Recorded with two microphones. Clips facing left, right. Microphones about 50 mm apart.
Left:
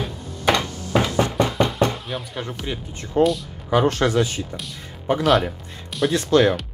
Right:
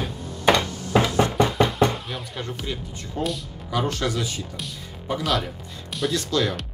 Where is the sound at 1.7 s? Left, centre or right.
Centre.